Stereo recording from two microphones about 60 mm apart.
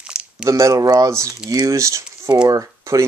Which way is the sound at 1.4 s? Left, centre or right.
Right.